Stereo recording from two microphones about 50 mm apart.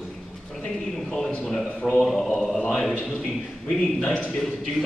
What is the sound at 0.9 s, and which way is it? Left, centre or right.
A man's voice, centre.